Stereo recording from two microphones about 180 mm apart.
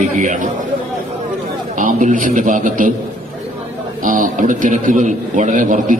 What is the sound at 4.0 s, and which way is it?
A man's voice, 50° right (ahead or behind).